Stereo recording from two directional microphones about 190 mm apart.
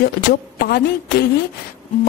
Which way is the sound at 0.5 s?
50° left (ahead or behind).